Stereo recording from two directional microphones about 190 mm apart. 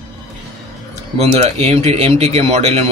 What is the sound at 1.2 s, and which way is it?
Speech, 35° right (ahead or behind).